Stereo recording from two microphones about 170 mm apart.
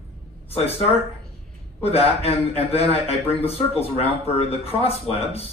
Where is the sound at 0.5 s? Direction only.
35° left (ahead or behind).